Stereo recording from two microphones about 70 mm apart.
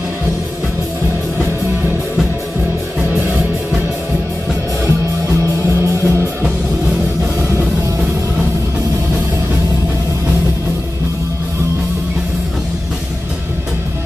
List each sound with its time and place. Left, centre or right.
5.4 s music: right